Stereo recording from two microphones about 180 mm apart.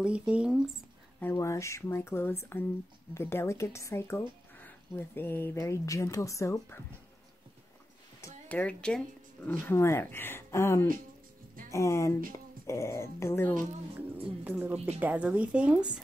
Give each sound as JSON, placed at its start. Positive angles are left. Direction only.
{"t": 0.0, "sound": "speech", "side_deg": -5}
{"t": 1.2, "sound": "speech", "side_deg": 15}
{"t": 8.2, "sound": "speech", "side_deg": 10}
{"t": 14.4, "sound": "speech", "side_deg": -10}